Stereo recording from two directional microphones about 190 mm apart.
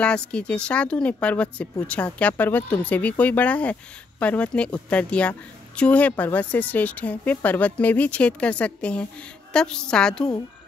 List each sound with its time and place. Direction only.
0.0 s a woman's voice: 5° left (ahead or behind)